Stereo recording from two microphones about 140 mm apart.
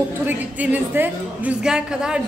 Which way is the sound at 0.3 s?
10° right (ahead or behind).